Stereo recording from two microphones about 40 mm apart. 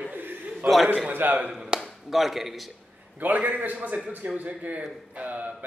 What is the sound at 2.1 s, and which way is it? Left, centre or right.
Speech, centre.